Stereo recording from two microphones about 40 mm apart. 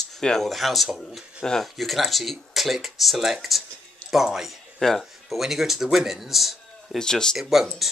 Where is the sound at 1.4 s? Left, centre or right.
Centre.